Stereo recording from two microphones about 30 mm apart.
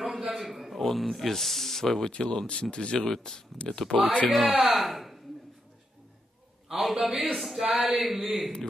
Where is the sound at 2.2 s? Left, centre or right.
Left.